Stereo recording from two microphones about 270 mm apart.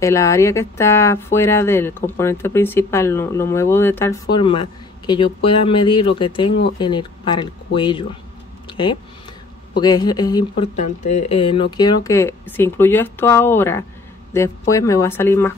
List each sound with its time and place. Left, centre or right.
0.0 s speech: centre
8.6 s a sound: centre
9.8 s speech: centre
10.8 s speech: left; by 15.5 s centre